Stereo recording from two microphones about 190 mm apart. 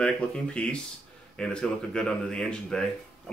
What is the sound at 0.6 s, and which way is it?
Speech, 5° left (ahead or behind).